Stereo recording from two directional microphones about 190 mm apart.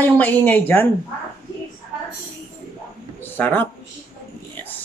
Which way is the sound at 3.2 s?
10° left (ahead or behind).